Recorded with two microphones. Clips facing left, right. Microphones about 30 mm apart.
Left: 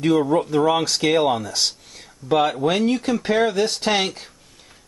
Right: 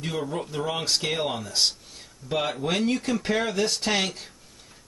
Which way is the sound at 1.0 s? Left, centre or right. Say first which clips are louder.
Left 9 dB; centre.